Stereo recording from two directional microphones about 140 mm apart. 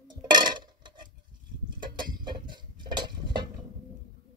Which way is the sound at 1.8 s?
35° right (ahead or behind).